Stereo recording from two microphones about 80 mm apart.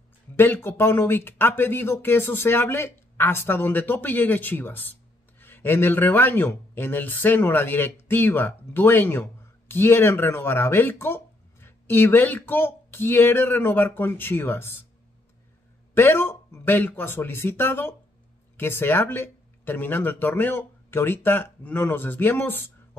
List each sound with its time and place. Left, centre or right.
0.4 s speech: left
15.9 s a man's voice: left